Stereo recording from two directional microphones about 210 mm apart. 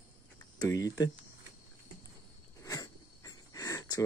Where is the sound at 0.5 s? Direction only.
15° left (ahead or behind).